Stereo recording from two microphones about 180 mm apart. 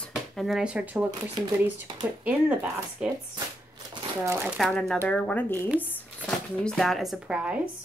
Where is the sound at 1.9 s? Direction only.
30° right (ahead or behind).